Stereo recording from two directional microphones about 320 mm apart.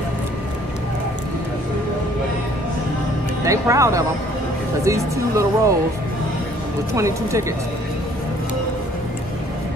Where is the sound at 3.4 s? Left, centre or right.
Centre.